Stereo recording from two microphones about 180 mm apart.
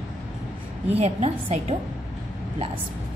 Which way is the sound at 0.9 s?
35° right (ahead or behind).